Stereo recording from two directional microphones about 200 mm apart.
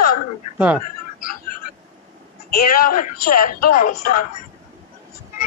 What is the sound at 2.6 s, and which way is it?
A man's voice, 45° left (ahead or behind).